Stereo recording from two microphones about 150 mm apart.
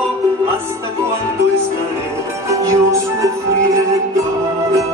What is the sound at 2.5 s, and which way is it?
Music, 20° right (ahead or behind).